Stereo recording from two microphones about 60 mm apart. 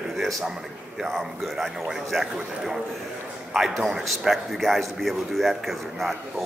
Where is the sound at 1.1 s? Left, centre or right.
Centre.